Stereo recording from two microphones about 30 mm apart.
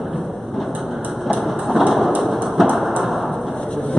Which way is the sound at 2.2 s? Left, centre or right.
Centre.